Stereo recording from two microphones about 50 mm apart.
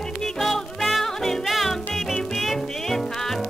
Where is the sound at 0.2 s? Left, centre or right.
Centre.